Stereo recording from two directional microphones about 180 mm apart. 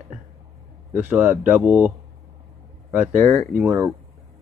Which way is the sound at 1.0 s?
10° right (ahead or behind).